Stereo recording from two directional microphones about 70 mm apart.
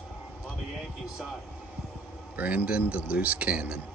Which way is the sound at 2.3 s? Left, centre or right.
Right.